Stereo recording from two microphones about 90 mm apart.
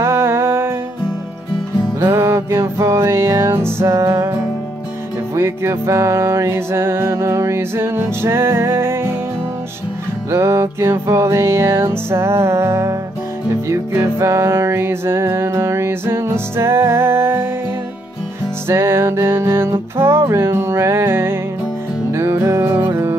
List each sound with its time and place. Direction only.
0.0 s music: 30° right (ahead or behind)
2.1 s music: 30° right (ahead or behind)
10.3 s music: 30° right (ahead or behind)
18.7 s music: 30° right (ahead or behind)